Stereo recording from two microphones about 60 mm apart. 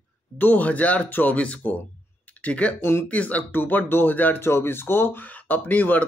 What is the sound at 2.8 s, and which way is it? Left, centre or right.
Speech, left.